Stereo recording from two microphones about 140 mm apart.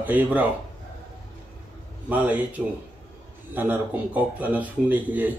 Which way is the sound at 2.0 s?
10° right (ahead or behind).